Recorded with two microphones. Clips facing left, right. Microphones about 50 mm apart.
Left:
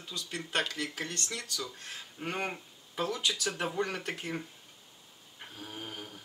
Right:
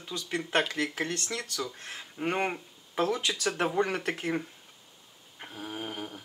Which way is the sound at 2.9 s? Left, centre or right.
Right.